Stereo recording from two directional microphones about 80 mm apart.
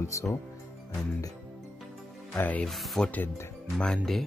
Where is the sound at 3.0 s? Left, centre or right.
Centre.